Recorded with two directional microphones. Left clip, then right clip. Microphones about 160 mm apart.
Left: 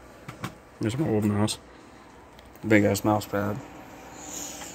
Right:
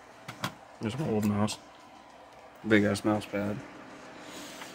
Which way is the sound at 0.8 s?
25° left (ahead or behind).